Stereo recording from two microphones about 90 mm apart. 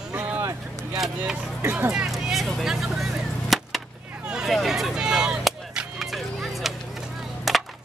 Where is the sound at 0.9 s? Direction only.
5° right (ahead or behind).